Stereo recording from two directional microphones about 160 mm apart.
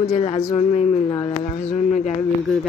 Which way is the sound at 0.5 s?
45° left (ahead or behind).